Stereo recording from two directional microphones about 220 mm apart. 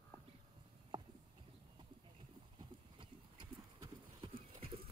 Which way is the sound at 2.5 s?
20° right (ahead or behind).